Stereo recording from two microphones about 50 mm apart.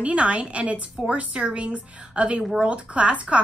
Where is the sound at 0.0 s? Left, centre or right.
Right.